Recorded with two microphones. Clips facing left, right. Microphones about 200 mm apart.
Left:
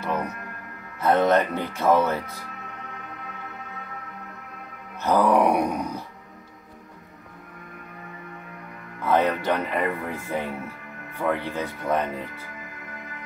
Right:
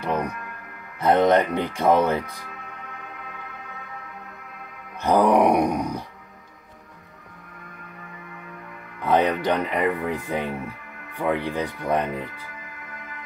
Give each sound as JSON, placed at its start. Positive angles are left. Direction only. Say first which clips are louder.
{"t": 0.0, "sound": "music", "louder": "right 2 dB", "side_deg": -15}
{"t": 0.9, "sound": "speech", "louder": "right 2 dB", "side_deg": -15}
{"t": 5.0, "sound": "speech", "louder": "right 2 dB", "side_deg": -15}
{"t": 9.0, "sound": "speech", "louder": "right 1 dB", "side_deg": -15}